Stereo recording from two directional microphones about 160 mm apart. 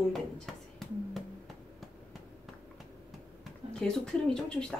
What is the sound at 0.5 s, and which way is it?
Speech, centre (ahead or behind).